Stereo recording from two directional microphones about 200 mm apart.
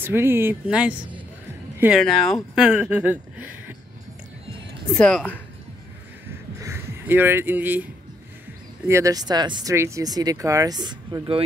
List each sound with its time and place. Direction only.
0.0 s speech: 10° right (ahead or behind)
4.9 s speech: 5° left (ahead or behind)
6.6 s speech: 10° right (ahead or behind)